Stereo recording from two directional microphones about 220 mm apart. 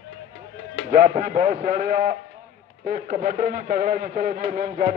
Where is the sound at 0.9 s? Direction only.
40° right (ahead or behind).